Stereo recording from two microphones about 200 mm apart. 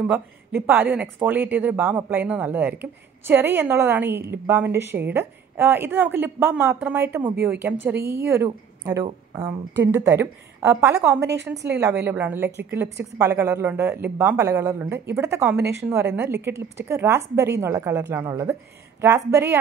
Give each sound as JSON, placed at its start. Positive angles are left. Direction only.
{"t": 0.0, "sound": "speech", "side_deg": -10}